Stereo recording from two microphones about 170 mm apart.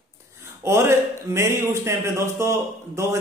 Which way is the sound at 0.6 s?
15° right (ahead or behind).